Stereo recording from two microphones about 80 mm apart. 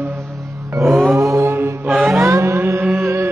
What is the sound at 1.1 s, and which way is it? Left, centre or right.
Mantra, right.